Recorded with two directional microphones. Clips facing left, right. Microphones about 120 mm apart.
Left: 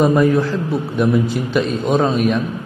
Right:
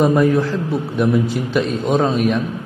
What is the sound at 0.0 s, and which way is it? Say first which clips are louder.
A man's voice: left 1 dB; 20° left (ahead or behind).